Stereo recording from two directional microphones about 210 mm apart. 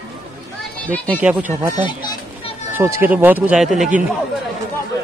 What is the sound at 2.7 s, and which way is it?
A man's voice, 10° right (ahead or behind).